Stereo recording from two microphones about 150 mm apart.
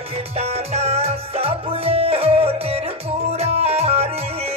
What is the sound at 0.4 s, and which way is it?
Music, 45° right (ahead or behind).